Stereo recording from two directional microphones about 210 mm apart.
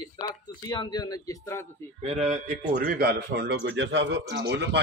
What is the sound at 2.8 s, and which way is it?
A man's voice, 45° right (ahead or behind).